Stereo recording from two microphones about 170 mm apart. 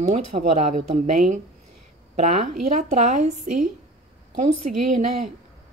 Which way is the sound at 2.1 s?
40° right (ahead or behind).